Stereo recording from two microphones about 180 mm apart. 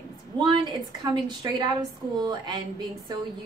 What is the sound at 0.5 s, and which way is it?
A woman's voice, 25° right (ahead or behind).